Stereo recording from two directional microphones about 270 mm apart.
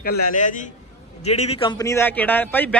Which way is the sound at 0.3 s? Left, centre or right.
Left.